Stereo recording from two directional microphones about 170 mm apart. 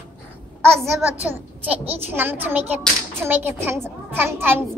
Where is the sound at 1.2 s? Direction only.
10° right (ahead or behind).